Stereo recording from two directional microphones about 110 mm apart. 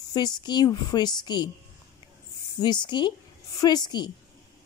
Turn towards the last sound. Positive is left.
turn(degrees=40)  # may be behind; listen again after turning